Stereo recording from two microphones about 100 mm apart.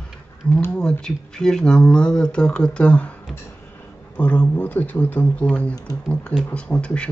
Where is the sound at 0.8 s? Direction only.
5° left (ahead or behind).